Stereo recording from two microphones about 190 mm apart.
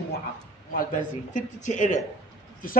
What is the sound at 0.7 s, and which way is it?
A man's voice, 45° left (ahead or behind).